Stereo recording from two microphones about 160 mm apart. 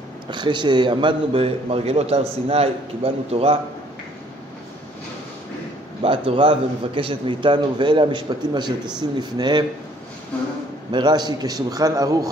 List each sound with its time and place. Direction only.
0.3 s a man's voice: 30° right (ahead or behind)
6.0 s a man's voice: 35° right (ahead or behind)
10.9 s a man's voice: 25° right (ahead or behind)